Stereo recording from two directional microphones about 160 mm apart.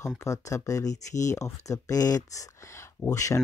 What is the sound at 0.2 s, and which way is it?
Speech, 20° left (ahead or behind).